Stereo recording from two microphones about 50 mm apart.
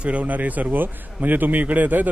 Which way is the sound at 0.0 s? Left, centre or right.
Right.